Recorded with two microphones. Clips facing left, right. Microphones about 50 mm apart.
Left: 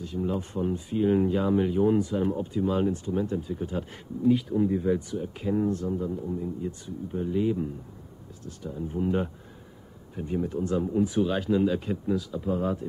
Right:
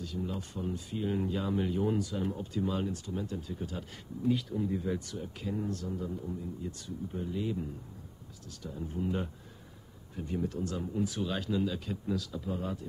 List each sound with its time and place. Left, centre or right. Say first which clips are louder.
0.0 s speech: left 7 dB; left
5.5 s speech: left 10 dB; left
8.9 s speech: left 7 dB; left